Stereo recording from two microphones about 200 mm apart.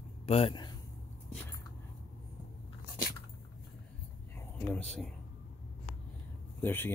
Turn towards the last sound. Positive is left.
turn(degrees=10)  # may be behind; listen again after turning